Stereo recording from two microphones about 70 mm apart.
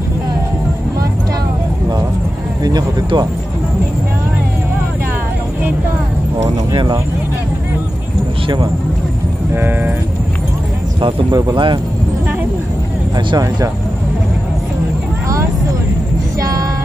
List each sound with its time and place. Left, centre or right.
2.6 s speech: right
9.5 s speech: right
11.3 s speech: right
13.3 s speech: right